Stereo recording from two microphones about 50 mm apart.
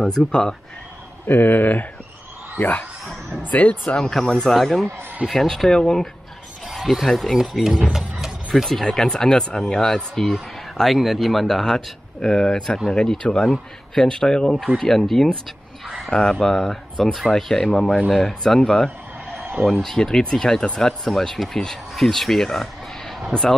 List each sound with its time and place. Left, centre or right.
0.0 s speech: centre
1.2 s speech: left
2.6 s speech: left
3.5 s speech: left
3.9 s speech: centre
6.7 s speech: centre
8.5 s speech: centre
8.9 s speech: centre